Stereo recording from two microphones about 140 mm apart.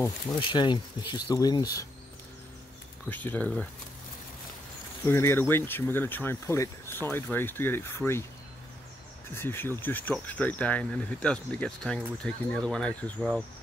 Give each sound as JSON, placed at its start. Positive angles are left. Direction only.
{"t": 0.4, "sound": "speech", "side_deg": 35}
{"t": 3.1, "sound": "speech", "side_deg": 10}
{"t": 5.0, "sound": "speech", "side_deg": 20}
{"t": 9.3, "sound": "speech", "side_deg": 15}